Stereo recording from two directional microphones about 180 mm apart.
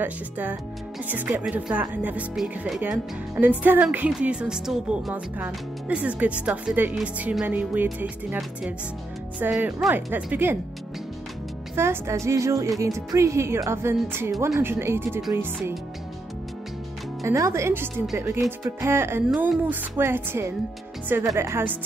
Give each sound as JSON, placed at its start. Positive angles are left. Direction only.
{"t": 0.0, "sound": "speech", "side_deg": -10}
{"t": 11.7, "sound": "speech", "side_deg": -15}
{"t": 17.2, "sound": "speech", "side_deg": -15}